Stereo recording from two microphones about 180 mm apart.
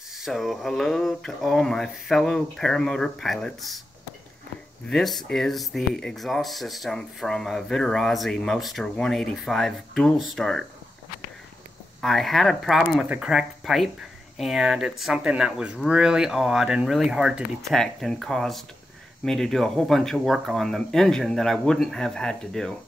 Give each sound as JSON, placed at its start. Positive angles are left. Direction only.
{"t": 0.2, "sound": "speech", "side_deg": 0}
{"t": 4.8, "sound": "speech", "side_deg": 0}
{"t": 12.0, "sound": "speech", "side_deg": 0}